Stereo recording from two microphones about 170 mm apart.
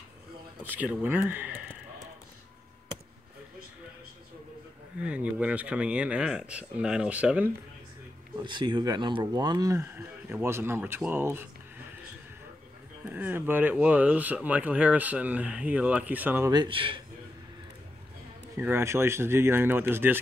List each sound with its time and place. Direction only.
0.7 s speech: 10° right (ahead or behind)
5.0 s speech: 5° right (ahead or behind)
8.5 s speech: 25° right (ahead or behind)
13.0 s speech: 10° right (ahead or behind)
16.5 s speech: 30° right (ahead or behind)
18.6 s speech: 15° right (ahead or behind)